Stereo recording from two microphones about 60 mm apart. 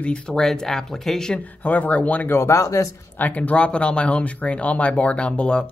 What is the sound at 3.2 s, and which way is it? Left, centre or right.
Speech, left.